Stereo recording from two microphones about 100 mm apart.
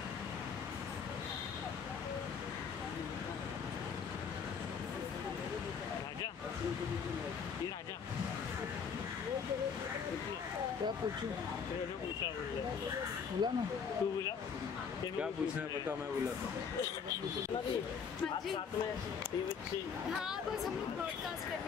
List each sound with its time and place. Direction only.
13.4 s speech: 45° right (ahead or behind)